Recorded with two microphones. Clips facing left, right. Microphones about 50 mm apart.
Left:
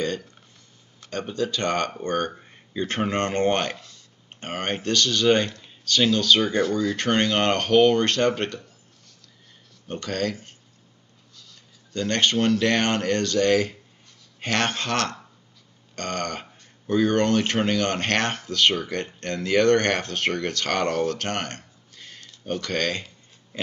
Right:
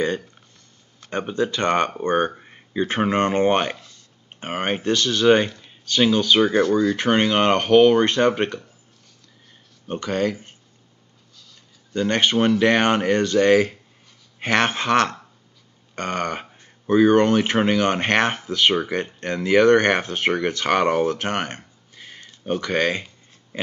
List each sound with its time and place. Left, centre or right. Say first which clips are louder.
1.1 s speech: right 4 dB; right
3.7 s speech: even; centre
4.4 s speech: right 4 dB; centre
6.7 s speech: right 5 dB; centre
7.0 s speech: right 3 dB; centre
9.8 s speech: right 4 dB; centre
11.9 s speech: right 3 dB; centre